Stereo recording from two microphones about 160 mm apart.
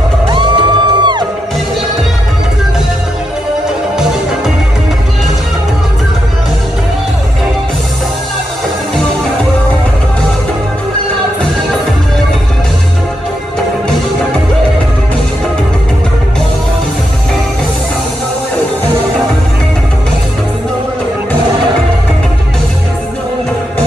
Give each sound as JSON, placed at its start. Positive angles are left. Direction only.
{"t": 0.3, "sound": "music", "side_deg": -30}